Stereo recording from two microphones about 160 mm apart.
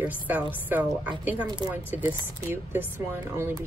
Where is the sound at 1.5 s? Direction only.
25° right (ahead or behind).